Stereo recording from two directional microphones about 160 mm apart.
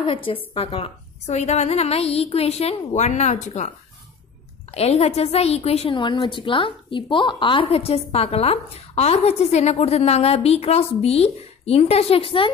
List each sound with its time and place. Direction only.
0.0 s a woman's voice: 35° left (ahead or behind)